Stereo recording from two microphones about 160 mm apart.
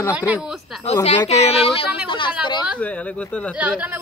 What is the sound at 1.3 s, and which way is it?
Speech, 40° left (ahead or behind).